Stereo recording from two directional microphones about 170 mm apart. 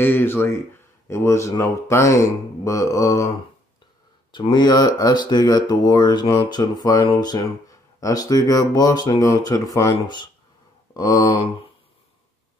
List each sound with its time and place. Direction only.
0.0 s speech: 10° left (ahead or behind)
4.3 s speech: 25° left (ahead or behind)